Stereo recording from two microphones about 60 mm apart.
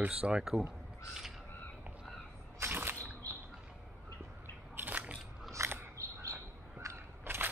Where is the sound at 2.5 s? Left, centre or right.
Right.